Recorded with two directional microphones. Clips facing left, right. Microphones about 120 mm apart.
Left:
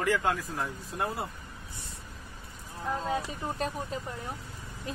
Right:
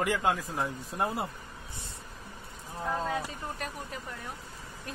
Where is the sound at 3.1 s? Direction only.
20° left (ahead or behind).